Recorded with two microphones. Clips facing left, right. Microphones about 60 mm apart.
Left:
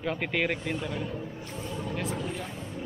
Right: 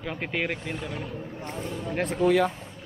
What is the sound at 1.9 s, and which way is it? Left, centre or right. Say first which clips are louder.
Speech: right 12 dB; right.